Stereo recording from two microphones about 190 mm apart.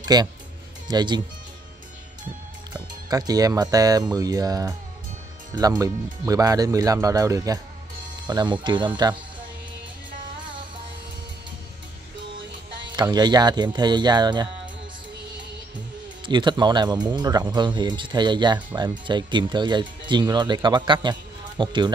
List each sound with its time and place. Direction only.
0.0 s speech: 20° right (ahead or behind)
3.1 s speech: 20° right (ahead or behind)
12.8 s speech: 20° right (ahead or behind)
16.3 s speech: 25° right (ahead or behind)